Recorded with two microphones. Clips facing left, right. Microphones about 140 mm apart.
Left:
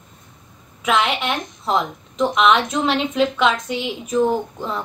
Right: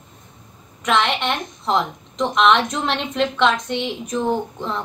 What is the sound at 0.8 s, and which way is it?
A woman's voice, 5° left (ahead or behind).